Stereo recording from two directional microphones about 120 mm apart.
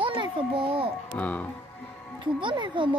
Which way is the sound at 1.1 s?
10° left (ahead or behind).